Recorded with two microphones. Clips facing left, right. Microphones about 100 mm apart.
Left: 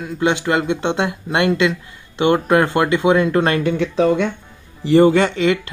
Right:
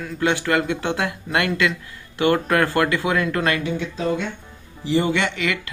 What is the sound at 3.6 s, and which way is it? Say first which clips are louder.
Speech: left 8 dB; 65° left (ahead or behind).